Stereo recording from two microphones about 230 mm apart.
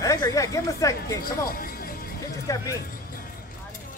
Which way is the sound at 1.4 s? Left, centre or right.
Left.